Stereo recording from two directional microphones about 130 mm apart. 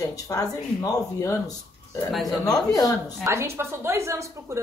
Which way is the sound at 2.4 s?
30° left (ahead or behind).